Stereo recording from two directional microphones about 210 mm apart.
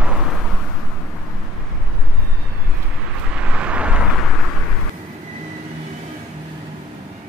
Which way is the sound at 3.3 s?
5° right (ahead or behind).